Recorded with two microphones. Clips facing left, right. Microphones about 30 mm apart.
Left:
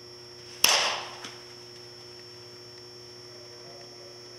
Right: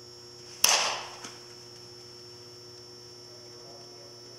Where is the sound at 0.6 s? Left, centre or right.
Left.